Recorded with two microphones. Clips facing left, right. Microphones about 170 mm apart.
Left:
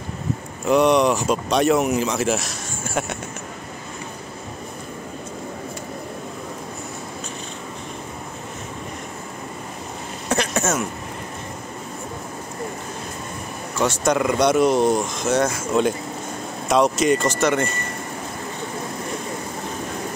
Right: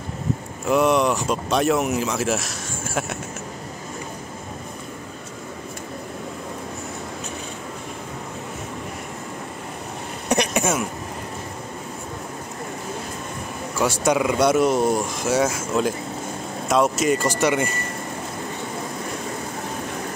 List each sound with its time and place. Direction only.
0.7 s speech: centre (ahead or behind)
10.2 s a sound: 15° right (ahead or behind)
13.7 s speech: 10° right (ahead or behind)